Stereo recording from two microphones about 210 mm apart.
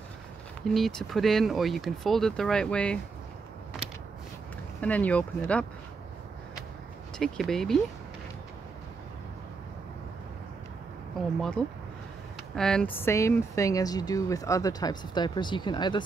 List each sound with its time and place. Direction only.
0.7 s speech: centre (ahead or behind)
4.7 s speech: 5° left (ahead or behind)
7.2 s speech: centre (ahead or behind)
11.1 s speech: centre (ahead or behind)
13.0 s speech: 15° left (ahead or behind)